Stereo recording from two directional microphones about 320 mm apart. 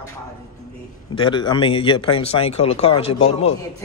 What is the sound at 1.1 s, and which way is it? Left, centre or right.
Speech, centre.